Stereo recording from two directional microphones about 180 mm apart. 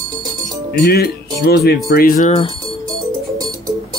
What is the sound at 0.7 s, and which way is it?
Speech, 60° left (ahead or behind).